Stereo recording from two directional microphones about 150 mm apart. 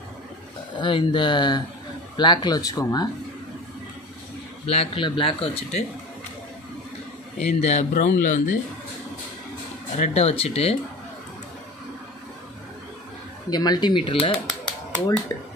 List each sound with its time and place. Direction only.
0.7 s speech: 30° left (ahead or behind)
4.6 s speech: 40° left (ahead or behind)
7.3 s speech: 50° left (ahead or behind)
9.9 s speech: 50° left (ahead or behind)
13.5 s speech: 25° left (ahead or behind)